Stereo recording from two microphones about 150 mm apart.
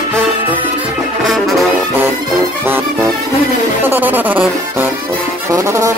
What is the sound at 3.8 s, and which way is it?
Music, 15° right (ahead or behind).